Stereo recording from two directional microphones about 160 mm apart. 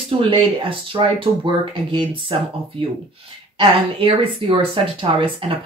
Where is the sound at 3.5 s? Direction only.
35° right (ahead or behind).